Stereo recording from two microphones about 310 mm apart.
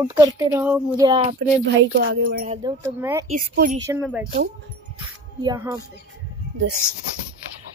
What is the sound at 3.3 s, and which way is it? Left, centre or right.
Speech, right.